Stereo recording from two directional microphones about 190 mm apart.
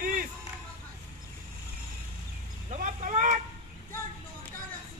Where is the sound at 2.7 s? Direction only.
45° right (ahead or behind).